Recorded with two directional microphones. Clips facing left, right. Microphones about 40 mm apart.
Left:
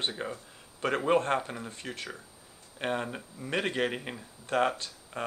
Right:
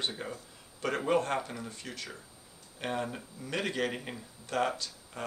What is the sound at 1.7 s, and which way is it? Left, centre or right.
A man's voice, left.